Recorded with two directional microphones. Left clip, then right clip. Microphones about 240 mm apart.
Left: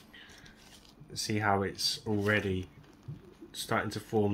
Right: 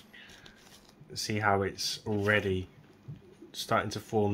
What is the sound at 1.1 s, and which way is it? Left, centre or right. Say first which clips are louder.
Speech: right 1 dB; centre.